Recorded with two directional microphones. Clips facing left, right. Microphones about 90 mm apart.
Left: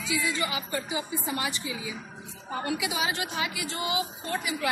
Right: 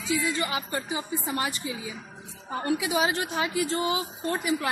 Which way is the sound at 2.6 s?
35° right (ahead or behind).